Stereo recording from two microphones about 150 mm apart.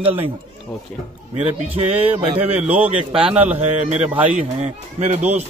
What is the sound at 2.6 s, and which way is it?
Speech, 10° right (ahead or behind).